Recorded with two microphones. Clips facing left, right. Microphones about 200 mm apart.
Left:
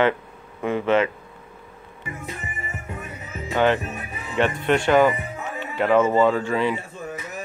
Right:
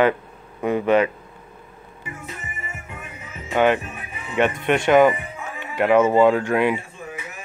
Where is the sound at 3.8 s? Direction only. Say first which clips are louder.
Left 3 dB; 40° left (ahead or behind).